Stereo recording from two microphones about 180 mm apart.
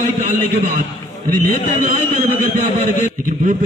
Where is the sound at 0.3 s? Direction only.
45° right (ahead or behind).